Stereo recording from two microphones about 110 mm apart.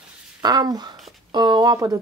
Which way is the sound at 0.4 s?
35° right (ahead or behind).